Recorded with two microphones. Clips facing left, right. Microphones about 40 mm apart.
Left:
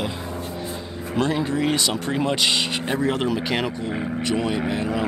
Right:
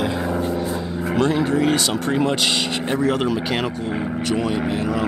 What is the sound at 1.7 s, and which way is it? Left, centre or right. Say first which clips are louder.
Speech: right 3 dB; right.